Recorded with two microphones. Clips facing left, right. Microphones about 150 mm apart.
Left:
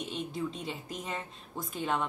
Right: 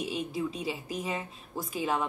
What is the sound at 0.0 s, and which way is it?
A woman's voice, 5° right (ahead or behind).